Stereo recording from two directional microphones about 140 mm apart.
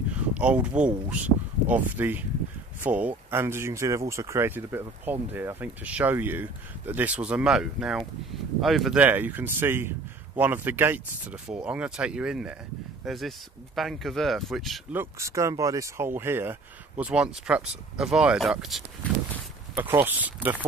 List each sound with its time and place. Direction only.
0.1 s speech: 10° right (ahead or behind)
9.0 s speech: 10° right (ahead or behind)
14.9 s speech: 20° right (ahead or behind); by 18.8 s centre (ahead or behind)
19.7 s speech: 15° right (ahead or behind)